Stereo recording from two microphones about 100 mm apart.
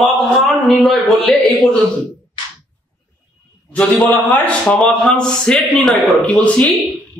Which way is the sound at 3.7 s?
15° left (ahead or behind).